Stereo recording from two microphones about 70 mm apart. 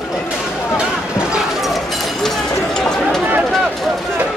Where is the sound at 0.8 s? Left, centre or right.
Centre.